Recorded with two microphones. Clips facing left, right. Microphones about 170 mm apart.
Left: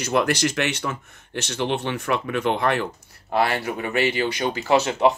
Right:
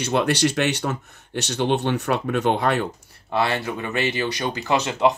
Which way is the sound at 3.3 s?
25° right (ahead or behind).